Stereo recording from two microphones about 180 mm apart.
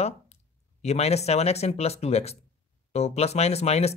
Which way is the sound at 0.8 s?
35° left (ahead or behind).